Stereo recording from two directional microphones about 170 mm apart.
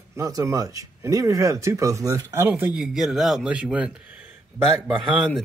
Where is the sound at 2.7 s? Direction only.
5° right (ahead or behind).